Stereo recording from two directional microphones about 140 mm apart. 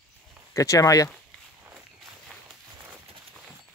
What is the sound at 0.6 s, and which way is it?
Speech, 25° left (ahead or behind).